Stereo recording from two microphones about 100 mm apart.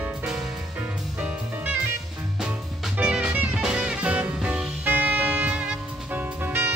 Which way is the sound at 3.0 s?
10° right (ahead or behind).